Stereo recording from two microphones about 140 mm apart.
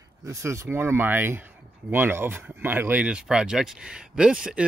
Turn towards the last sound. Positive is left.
turn(degrees=-5)  # may be behind; listen again after turning